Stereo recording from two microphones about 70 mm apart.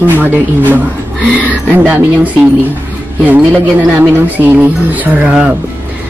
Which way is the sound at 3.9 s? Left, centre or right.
Right.